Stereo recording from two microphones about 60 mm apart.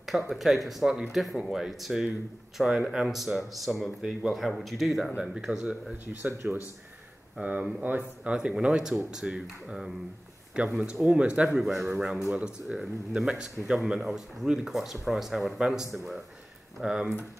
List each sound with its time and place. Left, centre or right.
0.3 s speech: centre
6.2 s speech: right
7.3 s speech: right
11.6 s speech: centre